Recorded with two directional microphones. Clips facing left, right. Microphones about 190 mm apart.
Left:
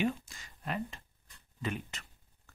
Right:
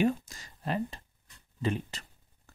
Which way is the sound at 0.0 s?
40° right (ahead or behind).